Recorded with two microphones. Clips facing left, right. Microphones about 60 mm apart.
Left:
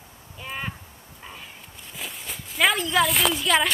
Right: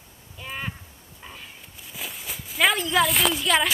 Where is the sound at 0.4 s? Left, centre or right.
Centre.